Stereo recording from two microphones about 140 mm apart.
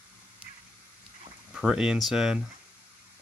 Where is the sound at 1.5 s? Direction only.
5° right (ahead or behind).